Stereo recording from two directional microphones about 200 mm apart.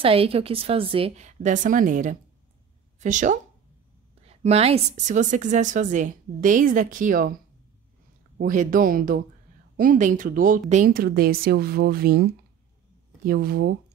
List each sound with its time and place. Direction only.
0.0 s a woman's voice: 30° right (ahead or behind); by 7.3 s 45° right (ahead or behind)
8.4 s a woman's voice: 40° right (ahead or behind)